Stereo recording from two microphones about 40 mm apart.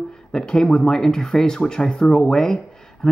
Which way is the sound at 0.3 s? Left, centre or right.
Centre.